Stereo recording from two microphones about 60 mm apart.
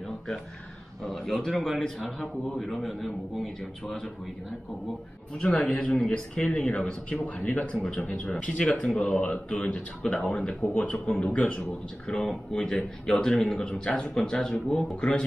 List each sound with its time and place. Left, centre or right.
1.0 s a man's voice: centre
5.4 s speech: centre
8.0 s speech: left